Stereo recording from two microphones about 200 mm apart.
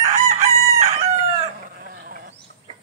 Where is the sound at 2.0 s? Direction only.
45° right (ahead or behind).